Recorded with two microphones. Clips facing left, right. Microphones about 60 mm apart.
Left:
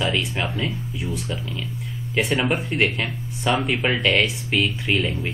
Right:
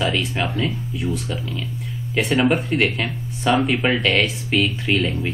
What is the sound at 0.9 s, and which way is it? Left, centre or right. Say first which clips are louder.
Speech: right 3 dB; centre.